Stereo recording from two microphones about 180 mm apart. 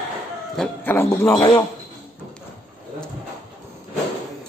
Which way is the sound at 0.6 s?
10° left (ahead or behind).